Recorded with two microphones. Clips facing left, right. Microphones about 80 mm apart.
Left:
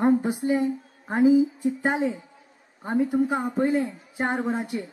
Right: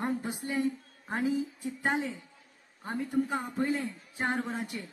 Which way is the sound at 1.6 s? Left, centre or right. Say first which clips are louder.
Left 7 dB; centre.